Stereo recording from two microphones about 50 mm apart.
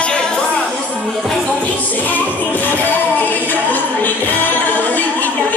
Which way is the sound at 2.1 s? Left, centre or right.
Left.